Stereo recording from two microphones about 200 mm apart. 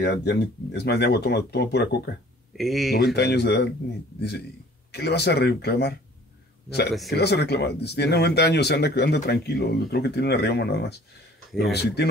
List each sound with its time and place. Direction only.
0.0 s speech: 55° left (ahead or behind)
2.5 s speech: centre (ahead or behind)
2.9 s speech: 55° left (ahead or behind)
4.9 s speech: 55° left (ahead or behind)
7.1 s speech: 55° left (ahead or behind)